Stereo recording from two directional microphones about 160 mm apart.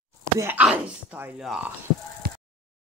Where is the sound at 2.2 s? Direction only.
70° right (ahead or behind).